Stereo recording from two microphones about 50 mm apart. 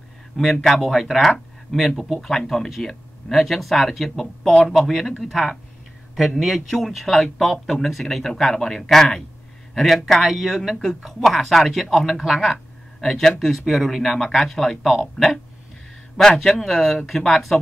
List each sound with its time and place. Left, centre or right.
0.3 s speech: centre